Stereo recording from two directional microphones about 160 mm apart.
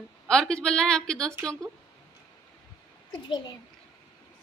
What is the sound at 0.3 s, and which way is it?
Speech, 5° left (ahead or behind).